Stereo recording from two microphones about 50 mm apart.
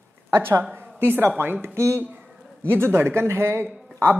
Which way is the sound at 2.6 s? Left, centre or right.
Right.